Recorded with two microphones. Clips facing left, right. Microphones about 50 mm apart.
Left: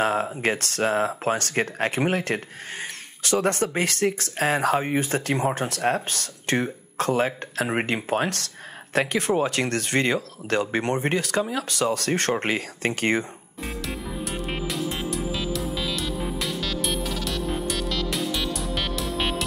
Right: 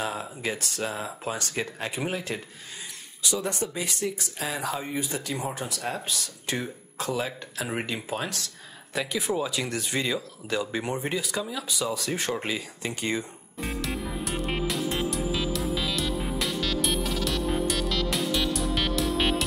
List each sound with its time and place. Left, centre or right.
0.0 s speech: left
13.6 s music: centre